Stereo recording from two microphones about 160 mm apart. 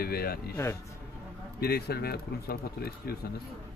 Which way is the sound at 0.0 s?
75° left (ahead or behind).